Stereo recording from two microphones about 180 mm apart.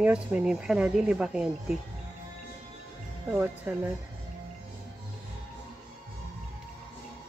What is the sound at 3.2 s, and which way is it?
Speech, 10° right (ahead or behind).